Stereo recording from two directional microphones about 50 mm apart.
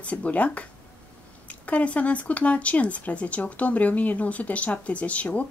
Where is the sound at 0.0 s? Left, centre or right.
Left.